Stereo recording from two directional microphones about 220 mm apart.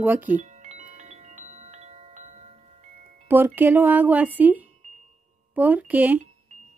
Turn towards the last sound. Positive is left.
turn(degrees=-5)  # may be behind; listen again after turning